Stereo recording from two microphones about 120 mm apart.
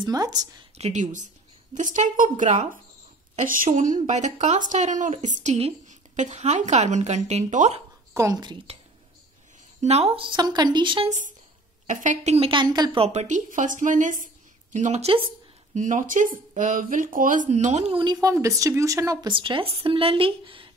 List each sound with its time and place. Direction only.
0.0 s speech: 35° right (ahead or behind)
0.7 s speech: 70° right (ahead or behind)
8.1 s a woman's voice: 25° right (ahead or behind)
8.7 s speech: 60° right (ahead or behind); by 11.1 s 40° right (ahead or behind)
11.9 s speech: 90° right; by 12.4 s 70° right (ahead or behind)
12.4 s speech: 35° right (ahead or behind)
12.9 s speech: 60° right (ahead or behind); by 14.2 s 90° right
14.7 s speech: 80° right; by 15.2 s 60° right (ahead or behind)
15.7 s speech: 90° right; by 17.9 s 75° right (ahead or behind)
17.9 s speech: 35° right (ahead or behind)
18.3 s speech: 25° right (ahead or behind)
19.2 s speech: 45° right (ahead or behind)